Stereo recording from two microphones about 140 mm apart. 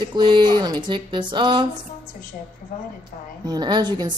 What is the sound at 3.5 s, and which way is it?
Speech, 30° right (ahead or behind).